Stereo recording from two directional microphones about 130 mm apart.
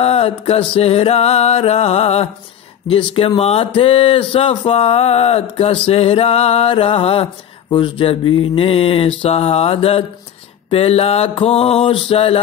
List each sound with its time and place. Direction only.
0.0 s speech: 50° left (ahead or behind)